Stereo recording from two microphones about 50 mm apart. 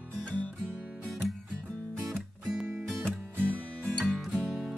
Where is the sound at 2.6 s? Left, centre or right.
Centre.